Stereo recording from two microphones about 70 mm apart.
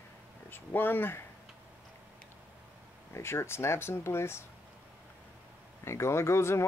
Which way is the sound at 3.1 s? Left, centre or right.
Left.